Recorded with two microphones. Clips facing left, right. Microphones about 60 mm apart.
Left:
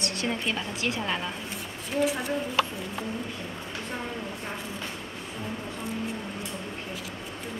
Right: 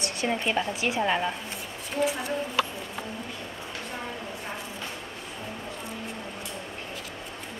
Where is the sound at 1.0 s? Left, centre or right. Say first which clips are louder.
Right 5 dB; right.